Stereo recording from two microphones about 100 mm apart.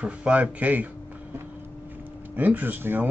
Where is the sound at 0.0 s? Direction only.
10° right (ahead or behind).